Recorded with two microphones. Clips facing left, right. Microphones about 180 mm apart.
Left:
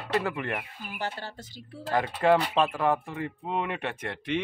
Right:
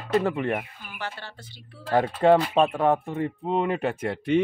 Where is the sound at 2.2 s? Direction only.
30° right (ahead or behind).